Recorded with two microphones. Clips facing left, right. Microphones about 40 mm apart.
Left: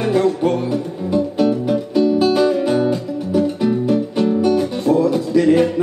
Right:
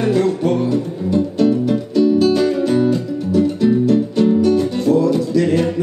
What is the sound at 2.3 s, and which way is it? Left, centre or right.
Music, left.